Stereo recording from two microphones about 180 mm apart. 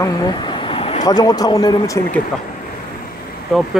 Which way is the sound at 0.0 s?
20° left (ahead or behind).